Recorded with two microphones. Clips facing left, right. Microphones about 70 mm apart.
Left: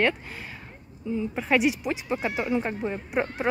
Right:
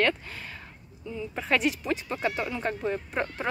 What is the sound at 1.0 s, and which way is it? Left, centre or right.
Speech, left.